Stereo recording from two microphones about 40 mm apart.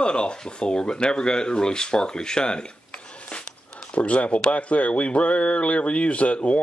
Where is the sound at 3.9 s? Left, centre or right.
Left.